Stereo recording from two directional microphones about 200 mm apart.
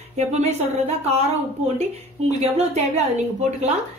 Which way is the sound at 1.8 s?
30° right (ahead or behind).